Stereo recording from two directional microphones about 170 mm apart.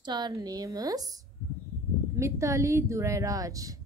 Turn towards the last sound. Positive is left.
turn(degrees=-20)  # may be behind; listen again after turning